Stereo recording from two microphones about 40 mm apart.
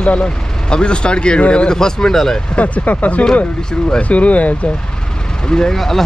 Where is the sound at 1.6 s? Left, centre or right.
Centre.